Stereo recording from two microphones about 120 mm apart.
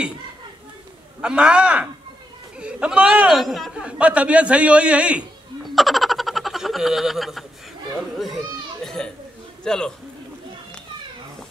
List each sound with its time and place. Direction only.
1.2 s a man's voice: 10° right (ahead or behind)
3.8 s a man's voice: 10° right (ahead or behind)
8.8 s children playing: 5° left (ahead or behind)
9.6 s a man's voice: 5° left (ahead or behind)